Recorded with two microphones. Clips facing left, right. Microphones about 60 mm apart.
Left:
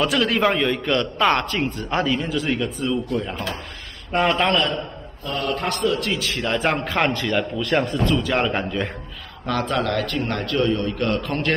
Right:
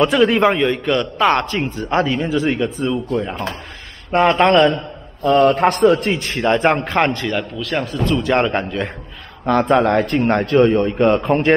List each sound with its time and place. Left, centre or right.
0.0 s a man's voice: centre
4.5 s a man's voice: right
5.2 s a man's voice: right
6.0 s a man's voice: right
7.3 s a man's voice: centre
9.8 s a man's voice: right